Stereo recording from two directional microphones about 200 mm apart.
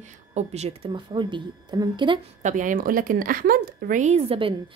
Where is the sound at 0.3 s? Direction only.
35° right (ahead or behind).